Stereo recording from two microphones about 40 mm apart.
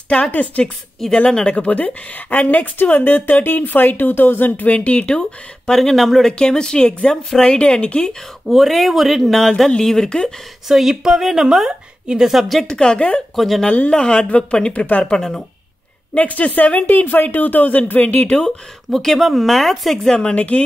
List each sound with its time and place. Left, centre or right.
0.3 s speech: left
1.1 s speech: left
1.7 s speech: left
4.5 s speech: left
5.7 s speech: centre
6.3 s speech: centre
8.5 s speech: centre
10.7 s a woman's voice: centre
12.6 s speech: left
15.1 s speech: centre
16.2 s speech: left
18.9 s speech: centre
20.1 s speech: centre
20.3 s speech: left